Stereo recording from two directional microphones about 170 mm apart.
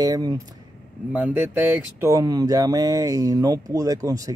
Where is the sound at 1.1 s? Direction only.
10° right (ahead or behind).